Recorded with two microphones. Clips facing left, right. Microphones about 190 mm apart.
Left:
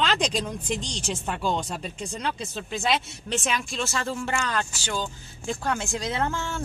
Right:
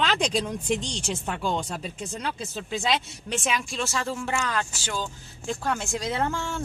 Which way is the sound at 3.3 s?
10° right (ahead or behind).